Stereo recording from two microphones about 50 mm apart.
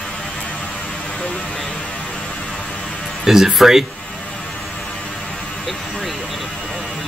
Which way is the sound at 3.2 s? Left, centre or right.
Centre.